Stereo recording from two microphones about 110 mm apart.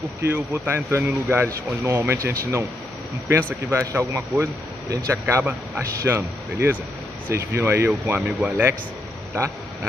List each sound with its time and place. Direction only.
0.2 s speech: 20° right (ahead or behind)
5.2 s speech: 15° right (ahead or behind)